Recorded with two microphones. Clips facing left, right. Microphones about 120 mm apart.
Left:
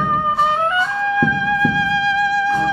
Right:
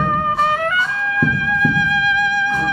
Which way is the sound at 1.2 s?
30° left (ahead or behind).